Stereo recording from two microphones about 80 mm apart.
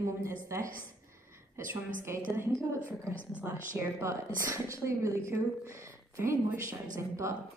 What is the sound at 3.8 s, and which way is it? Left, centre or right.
A woman's voice, right.